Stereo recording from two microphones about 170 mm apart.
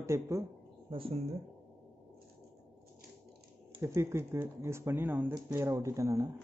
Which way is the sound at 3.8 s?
15° right (ahead or behind).